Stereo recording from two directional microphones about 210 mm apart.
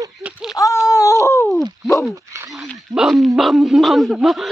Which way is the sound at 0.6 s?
15° left (ahead or behind).